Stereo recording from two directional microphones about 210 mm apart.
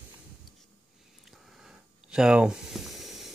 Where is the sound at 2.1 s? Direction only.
5° right (ahead or behind).